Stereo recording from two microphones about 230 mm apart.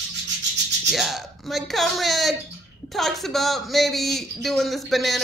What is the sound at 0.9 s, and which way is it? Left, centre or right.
A man's voice, centre.